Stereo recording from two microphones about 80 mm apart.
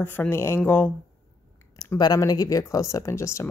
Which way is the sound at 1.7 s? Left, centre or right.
Left.